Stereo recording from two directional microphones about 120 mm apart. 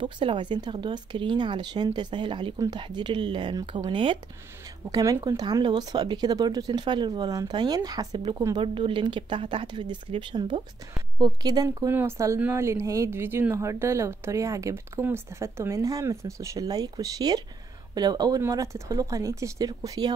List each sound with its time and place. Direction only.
0.0 s speech: 45° right (ahead or behind)
4.9 s speech: 30° right (ahead or behind)
11.9 s speech: 20° right (ahead or behind)